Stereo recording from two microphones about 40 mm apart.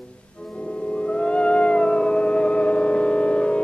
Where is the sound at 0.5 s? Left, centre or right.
Left.